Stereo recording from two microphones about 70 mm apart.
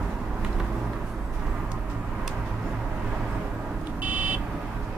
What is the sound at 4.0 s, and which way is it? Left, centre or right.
Buzzer, right.